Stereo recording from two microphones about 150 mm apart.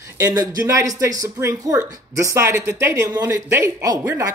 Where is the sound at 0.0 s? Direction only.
25° right (ahead or behind).